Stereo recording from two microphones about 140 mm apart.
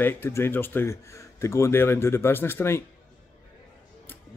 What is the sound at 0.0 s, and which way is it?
A man's voice, 15° left (ahead or behind).